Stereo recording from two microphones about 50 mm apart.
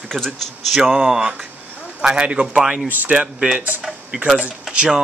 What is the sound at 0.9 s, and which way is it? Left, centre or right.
Speech, centre.